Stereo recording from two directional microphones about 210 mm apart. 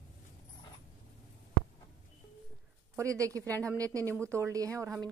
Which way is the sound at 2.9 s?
15° right (ahead or behind).